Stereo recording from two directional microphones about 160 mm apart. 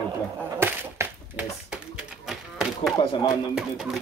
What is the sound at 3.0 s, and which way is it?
Speech, 30° left (ahead or behind).